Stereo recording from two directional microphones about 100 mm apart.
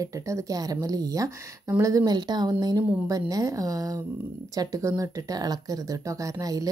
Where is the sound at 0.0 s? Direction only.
30° right (ahead or behind).